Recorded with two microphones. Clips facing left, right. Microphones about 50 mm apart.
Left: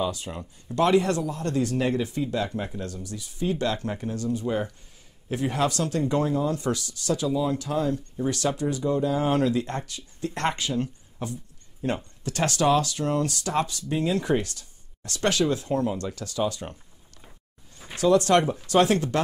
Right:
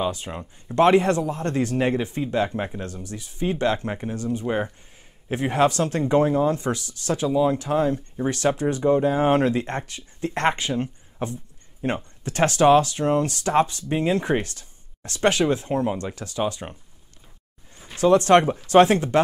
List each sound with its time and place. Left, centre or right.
0.0 s speech: right
18.0 s speech: right